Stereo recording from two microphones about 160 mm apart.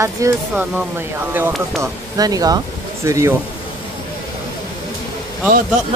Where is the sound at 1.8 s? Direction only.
25° right (ahead or behind).